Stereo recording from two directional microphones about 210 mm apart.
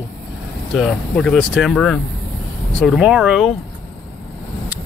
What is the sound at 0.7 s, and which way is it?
Speech, 5° left (ahead or behind).